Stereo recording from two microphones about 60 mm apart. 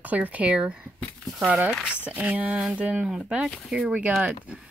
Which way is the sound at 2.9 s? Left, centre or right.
Centre.